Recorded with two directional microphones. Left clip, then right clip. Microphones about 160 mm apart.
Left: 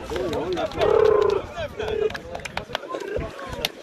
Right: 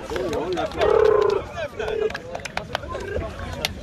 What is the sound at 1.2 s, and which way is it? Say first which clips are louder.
Run: right 1 dB; 15° right (ahead or behind).